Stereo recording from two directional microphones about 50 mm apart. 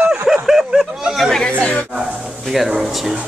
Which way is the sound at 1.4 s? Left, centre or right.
Left.